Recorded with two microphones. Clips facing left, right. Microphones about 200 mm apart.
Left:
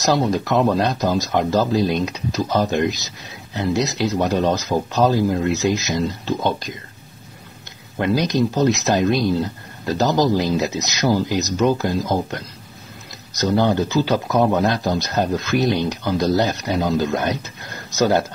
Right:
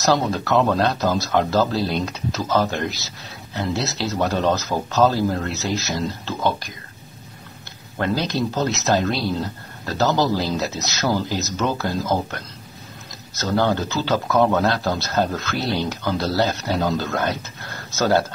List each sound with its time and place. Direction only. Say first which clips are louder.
0.0 s speech: left 2 dB; 15° left (ahead or behind)
8.0 s speech: left 4 dB; 15° left (ahead or behind)